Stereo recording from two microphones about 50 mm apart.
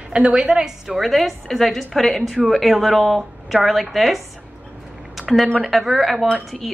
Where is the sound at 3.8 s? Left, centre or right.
Centre.